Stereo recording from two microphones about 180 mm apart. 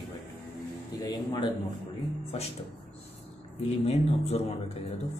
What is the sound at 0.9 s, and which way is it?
Speech, 20° left (ahead or behind).